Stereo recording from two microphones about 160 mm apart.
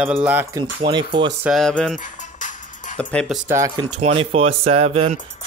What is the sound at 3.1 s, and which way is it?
Speech, centre (ahead or behind).